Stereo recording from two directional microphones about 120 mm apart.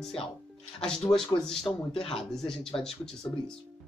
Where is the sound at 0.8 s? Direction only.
5° left (ahead or behind).